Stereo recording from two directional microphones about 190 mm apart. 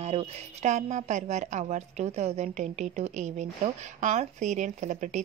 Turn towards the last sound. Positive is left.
turn(degrees=-40)  # may be behind; listen again after turning